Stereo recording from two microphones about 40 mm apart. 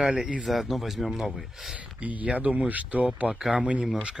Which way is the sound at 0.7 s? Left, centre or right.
Centre.